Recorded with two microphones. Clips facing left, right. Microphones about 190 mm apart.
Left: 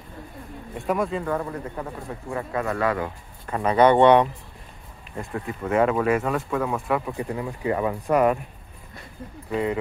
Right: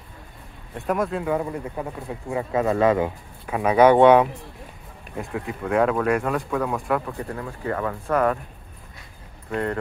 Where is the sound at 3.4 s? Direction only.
10° right (ahead or behind).